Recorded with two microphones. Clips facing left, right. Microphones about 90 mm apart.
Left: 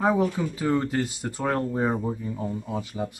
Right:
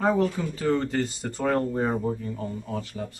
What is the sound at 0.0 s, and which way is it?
Speech, 10° left (ahead or behind).